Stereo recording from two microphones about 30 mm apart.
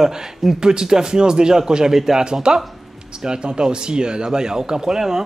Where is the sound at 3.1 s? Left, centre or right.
Right.